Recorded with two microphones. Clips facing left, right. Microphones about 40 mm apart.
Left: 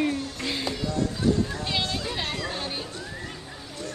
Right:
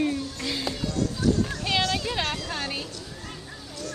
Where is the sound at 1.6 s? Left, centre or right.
Right.